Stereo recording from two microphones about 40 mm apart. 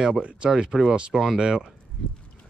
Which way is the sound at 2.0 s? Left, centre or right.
Left.